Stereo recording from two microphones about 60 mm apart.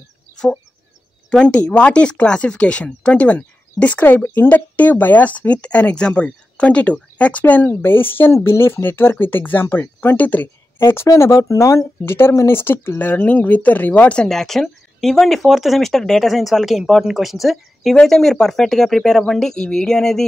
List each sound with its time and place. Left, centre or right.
1.4 s speech: left
7.6 s speech: left
10.8 s speech: left
12.0 s speech: left; by 14.3 s centre
14.3 s speech: centre